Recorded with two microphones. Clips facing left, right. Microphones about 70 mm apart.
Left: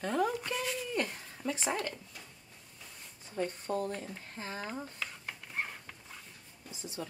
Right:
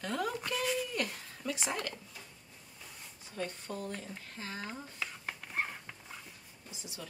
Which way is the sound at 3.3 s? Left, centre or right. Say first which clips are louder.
Left 5 dB; left.